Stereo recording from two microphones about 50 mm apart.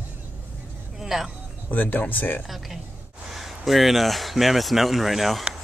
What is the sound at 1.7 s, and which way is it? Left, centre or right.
Speech, left.